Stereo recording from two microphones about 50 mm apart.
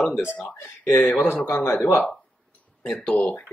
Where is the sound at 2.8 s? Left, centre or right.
Centre.